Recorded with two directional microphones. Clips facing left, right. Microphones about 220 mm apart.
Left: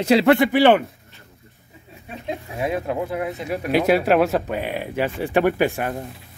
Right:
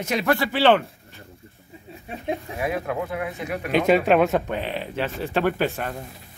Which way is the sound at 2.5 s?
25° left (ahead or behind).